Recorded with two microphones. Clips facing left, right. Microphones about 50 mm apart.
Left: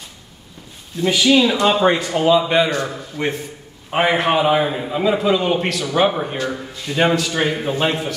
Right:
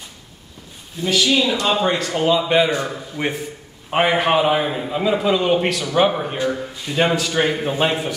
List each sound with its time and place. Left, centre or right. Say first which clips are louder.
1.0 s speech: left 3 dB; centre
2.1 s a man's voice: right 1 dB; centre
2.7 s a man's voice: even; centre
6.3 s speech: right 2 dB; centre
6.9 s a man's voice: left 2 dB; centre